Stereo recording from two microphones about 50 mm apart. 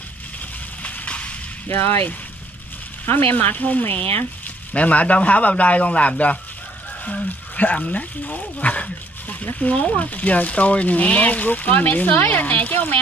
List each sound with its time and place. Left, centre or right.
0.8 s a sound: left
1.7 s speech: left
3.1 s speech: left